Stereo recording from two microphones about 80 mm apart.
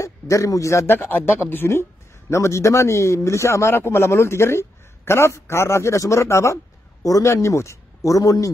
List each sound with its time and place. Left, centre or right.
0.0 s a man's voice: left
0.8 s speech: left